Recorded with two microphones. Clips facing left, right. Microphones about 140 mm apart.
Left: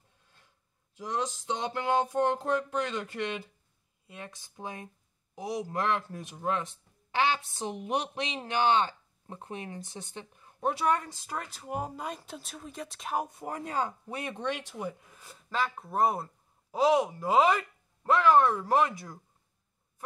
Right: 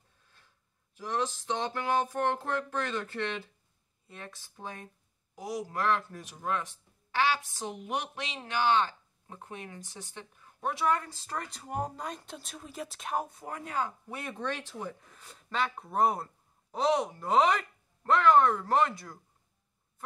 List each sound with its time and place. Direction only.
0.9 s a woman's voice: 15° left (ahead or behind); by 13.2 s centre (ahead or behind)
13.3 s speech: 25° left (ahead or behind)